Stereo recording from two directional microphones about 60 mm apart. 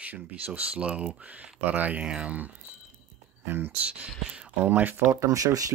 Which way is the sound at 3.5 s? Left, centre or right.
Right.